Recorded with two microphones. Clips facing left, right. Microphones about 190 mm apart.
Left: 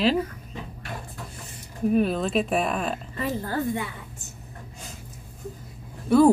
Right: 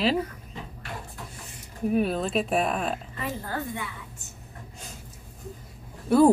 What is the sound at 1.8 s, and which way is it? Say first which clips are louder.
Speech: left 2 dB; 5° right (ahead or behind).